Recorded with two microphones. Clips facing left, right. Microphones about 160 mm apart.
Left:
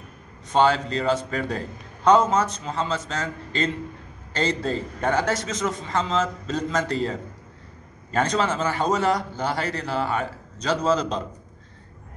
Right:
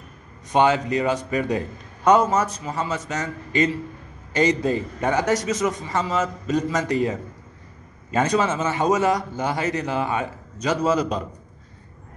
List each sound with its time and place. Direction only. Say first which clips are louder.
0.5 s a man's voice: right 1 dB; 15° right (ahead or behind)